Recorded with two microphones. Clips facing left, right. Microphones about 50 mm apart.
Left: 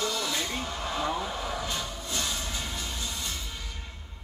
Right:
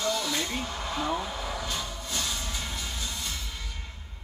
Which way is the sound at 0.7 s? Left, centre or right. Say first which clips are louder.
Left 1 dB; centre.